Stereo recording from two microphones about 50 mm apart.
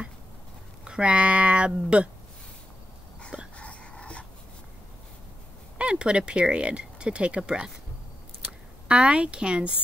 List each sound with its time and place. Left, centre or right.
0.8 s speech: right
3.5 s a sound: left
5.8 s speech: right